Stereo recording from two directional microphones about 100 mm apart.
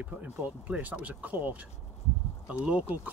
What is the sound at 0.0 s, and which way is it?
Speech, 15° right (ahead or behind).